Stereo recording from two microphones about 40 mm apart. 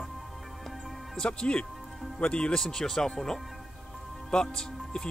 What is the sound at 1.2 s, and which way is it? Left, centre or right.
Speech, left.